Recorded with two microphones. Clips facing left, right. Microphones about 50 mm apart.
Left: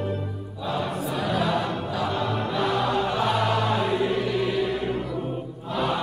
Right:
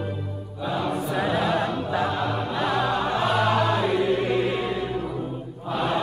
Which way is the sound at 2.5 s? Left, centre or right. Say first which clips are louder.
Left 1 dB; centre.